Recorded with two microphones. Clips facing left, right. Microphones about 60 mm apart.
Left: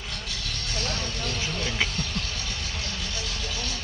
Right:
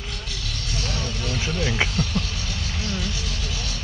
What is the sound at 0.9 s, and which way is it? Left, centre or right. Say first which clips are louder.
Vehicle: right 3 dB; centre.